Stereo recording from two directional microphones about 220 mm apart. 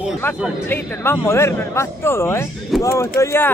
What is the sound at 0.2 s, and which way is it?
A man's voice, 10° left (ahead or behind).